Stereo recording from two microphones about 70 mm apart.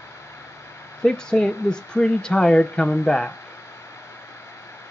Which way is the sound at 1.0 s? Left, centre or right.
Centre.